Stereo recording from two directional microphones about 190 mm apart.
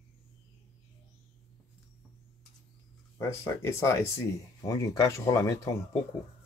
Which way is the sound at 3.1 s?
15° left (ahead or behind).